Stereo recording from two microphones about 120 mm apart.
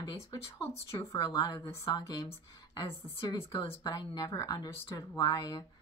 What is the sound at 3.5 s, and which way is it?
A woman's voice, 40° left (ahead or behind).